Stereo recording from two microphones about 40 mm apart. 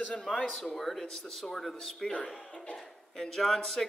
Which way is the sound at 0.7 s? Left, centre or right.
Centre.